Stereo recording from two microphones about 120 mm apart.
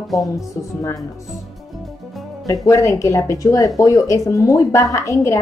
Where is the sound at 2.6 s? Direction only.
25° left (ahead or behind).